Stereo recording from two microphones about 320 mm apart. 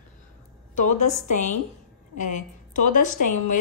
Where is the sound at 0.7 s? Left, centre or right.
Left.